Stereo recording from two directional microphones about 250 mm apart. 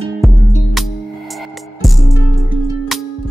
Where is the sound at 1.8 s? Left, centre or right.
Centre.